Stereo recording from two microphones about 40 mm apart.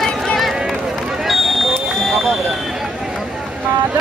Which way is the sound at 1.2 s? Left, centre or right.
Centre.